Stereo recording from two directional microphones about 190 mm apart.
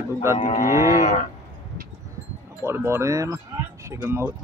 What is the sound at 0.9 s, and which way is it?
Cattle, 40° left (ahead or behind).